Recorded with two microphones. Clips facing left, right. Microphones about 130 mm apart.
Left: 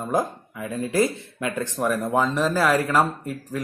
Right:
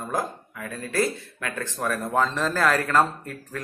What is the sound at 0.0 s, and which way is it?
Speech, 20° left (ahead or behind).